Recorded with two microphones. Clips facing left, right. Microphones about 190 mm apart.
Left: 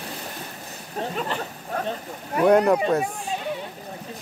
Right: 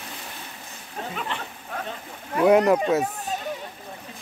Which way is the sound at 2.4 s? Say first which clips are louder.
Even; 5° right (ahead or behind).